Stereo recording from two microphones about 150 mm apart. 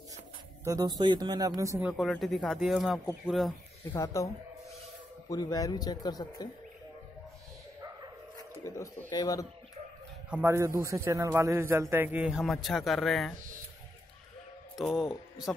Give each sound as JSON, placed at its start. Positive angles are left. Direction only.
{"t": 0.7, "sound": "speech", "side_deg": -25}
{"t": 1.8, "sound": "a man's voice", "side_deg": -5}
{"t": 3.9, "sound": "speech", "side_deg": 20}
{"t": 5.3, "sound": "speech", "side_deg": 25}
{"t": 8.6, "sound": "speech", "side_deg": 20}
{"t": 10.3, "sound": "a man's voice", "side_deg": -15}
{"t": 14.8, "sound": "speech", "side_deg": 0}